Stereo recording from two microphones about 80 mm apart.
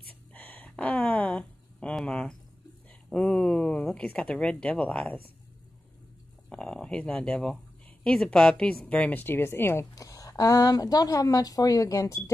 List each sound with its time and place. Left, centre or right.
0.3 s a sound: centre
3.1 s speech: centre
6.5 s speech: centre; by 9.8 s left
9.9 s speech: left